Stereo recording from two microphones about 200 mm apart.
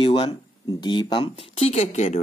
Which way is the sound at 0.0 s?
25° left (ahead or behind).